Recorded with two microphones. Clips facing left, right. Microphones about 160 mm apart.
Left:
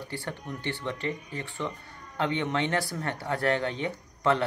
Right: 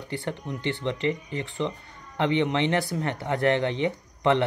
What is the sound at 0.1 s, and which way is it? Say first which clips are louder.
Speech: right 7 dB; 20° right (ahead or behind).